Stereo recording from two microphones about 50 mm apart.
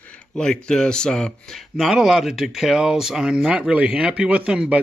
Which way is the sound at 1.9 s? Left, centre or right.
Centre.